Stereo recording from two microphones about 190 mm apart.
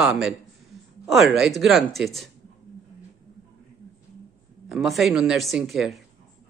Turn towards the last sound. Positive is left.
turn(degrees=0)  # may be behind; listen again after turning